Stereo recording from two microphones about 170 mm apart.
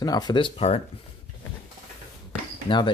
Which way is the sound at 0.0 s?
25° left (ahead or behind).